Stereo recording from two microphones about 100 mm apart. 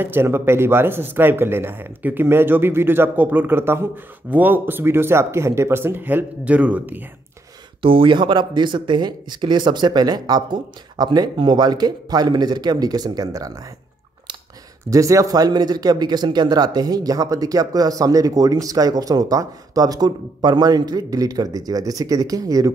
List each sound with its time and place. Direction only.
0.0 s speech: 20° right (ahead or behind)
7.8 s speech: 60° right (ahead or behind); by 13.5 s 40° right (ahead or behind)
14.9 s speech: 35° right (ahead or behind)